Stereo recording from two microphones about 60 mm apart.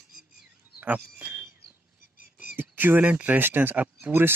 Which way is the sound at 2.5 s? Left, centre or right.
Right.